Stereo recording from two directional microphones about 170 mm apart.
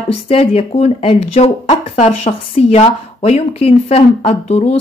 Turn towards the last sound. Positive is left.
turn(degrees=40)  # may be behind; listen again after turning